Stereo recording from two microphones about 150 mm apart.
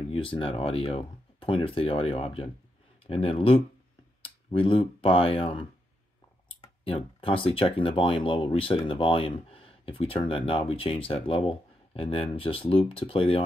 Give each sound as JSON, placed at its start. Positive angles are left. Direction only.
{"t": 0.1, "sound": "speech", "side_deg": 35}
{"t": 6.9, "sound": "speech", "side_deg": 40}